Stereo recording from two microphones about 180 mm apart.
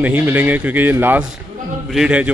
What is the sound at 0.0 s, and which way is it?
A man's voice, 10° right (ahead or behind).